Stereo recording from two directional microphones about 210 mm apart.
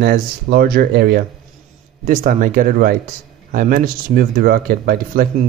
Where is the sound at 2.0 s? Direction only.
40° right (ahead or behind).